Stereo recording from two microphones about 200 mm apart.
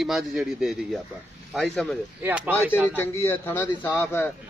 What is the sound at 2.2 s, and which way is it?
Speech, 10° right (ahead or behind).